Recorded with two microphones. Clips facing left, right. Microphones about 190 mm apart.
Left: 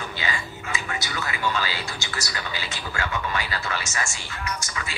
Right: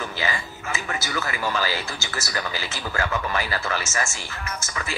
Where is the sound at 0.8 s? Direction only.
40° right (ahead or behind).